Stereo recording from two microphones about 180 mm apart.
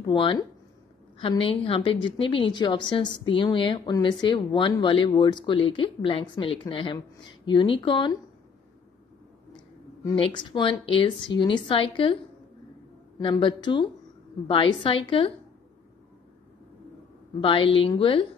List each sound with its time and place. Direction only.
0.0 s a woman's voice: 30° left (ahead or behind)
10.1 s a woman's voice: 30° left (ahead or behind)
13.2 s a woman's voice: 25° left (ahead or behind)
15.0 s a woman's voice: 30° left (ahead or behind)
17.4 s a woman's voice: 30° left (ahead or behind)